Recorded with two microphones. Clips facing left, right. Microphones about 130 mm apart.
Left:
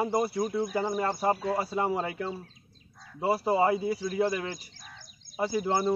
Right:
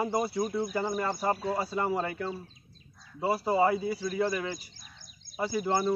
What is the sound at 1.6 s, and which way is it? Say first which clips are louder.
Speech: left 1 dB; 20° left (ahead or behind).